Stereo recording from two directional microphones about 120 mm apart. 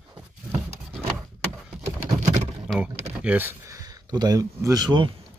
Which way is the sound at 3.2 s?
15° right (ahead or behind).